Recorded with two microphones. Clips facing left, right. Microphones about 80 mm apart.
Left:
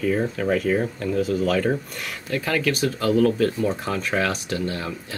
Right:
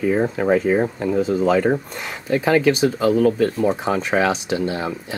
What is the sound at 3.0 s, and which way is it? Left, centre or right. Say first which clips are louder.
Speech: right 2 dB; centre.